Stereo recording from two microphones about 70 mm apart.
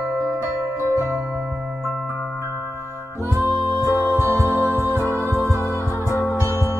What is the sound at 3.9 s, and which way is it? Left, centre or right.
Music, left.